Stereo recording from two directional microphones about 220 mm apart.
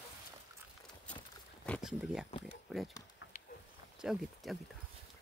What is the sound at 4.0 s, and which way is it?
Speech, centre (ahead or behind).